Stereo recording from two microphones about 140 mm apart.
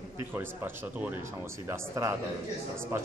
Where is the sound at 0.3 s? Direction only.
15° right (ahead or behind).